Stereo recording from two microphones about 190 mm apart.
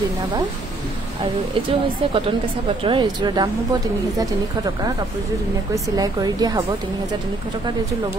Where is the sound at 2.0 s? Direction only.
30° right (ahead or behind).